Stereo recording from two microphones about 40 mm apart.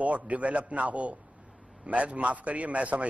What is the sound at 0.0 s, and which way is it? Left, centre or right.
A man's voice, right.